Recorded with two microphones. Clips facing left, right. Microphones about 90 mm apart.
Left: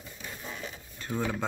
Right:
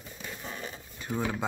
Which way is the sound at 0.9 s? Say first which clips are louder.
Even; 10° right (ahead or behind).